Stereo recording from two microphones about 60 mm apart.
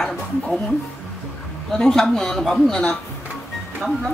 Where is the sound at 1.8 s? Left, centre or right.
Centre.